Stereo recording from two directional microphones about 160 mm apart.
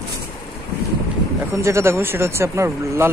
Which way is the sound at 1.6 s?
15° right (ahead or behind).